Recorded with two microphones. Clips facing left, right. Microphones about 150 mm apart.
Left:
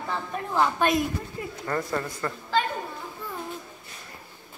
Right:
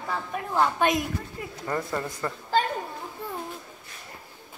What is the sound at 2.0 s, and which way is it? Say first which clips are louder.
Speech: even; 15° right (ahead or behind).